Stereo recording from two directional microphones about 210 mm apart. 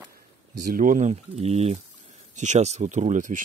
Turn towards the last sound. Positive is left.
turn(degrees=-35)  # may be behind; listen again after turning